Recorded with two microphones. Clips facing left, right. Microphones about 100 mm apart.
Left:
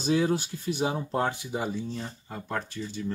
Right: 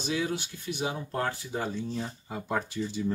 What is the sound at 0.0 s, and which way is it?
Speech, 35° left (ahead or behind).